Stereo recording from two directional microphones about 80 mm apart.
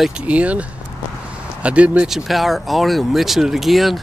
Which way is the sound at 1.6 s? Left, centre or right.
Centre.